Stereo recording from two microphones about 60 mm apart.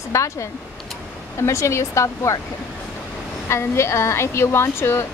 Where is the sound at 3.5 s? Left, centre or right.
Left.